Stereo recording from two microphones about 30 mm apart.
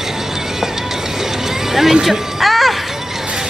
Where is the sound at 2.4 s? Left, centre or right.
Centre.